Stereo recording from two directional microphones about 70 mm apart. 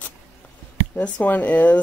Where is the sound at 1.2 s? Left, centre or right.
Left.